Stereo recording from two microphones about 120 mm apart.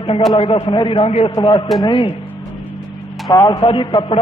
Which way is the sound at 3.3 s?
30° left (ahead or behind).